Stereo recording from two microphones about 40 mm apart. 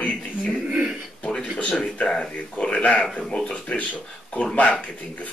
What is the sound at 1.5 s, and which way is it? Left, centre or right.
Speech, left.